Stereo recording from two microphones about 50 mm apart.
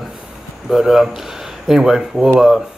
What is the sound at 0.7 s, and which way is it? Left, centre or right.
Speech, centre.